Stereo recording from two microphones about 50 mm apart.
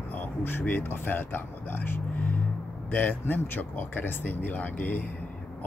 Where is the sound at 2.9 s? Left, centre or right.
Left.